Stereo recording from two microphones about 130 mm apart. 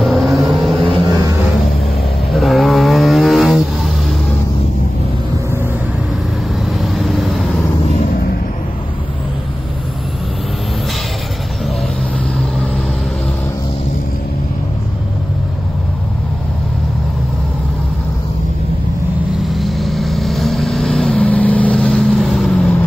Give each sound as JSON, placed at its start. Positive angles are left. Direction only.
{"t": 0.0, "sound": "vehicle", "side_deg": 0}
{"t": 0.8, "sound": "vehicle", "side_deg": -35}
{"t": 2.3, "sound": "vehicle", "side_deg": 0}
{"t": 6.8, "sound": "vehicle", "side_deg": 0}
{"t": 19.5, "sound": "vehicle", "side_deg": 0}